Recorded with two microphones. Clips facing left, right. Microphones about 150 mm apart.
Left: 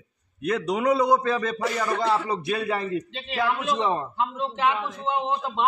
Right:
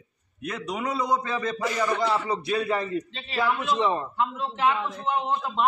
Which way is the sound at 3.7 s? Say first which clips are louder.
Even; 25° left (ahead or behind).